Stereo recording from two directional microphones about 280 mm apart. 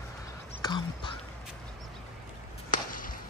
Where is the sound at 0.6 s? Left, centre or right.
Centre.